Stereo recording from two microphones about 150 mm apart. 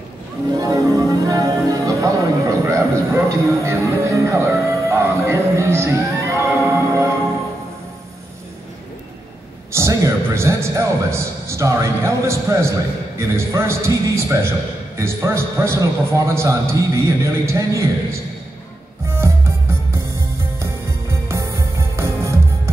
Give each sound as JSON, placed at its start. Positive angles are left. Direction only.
{"t": 0.6, "sound": "music", "side_deg": -25}
{"t": 9.7, "sound": "music", "side_deg": -20}
{"t": 15.0, "sound": "a man's voice", "side_deg": -15}
{"t": 19.0, "sound": "music", "side_deg": -15}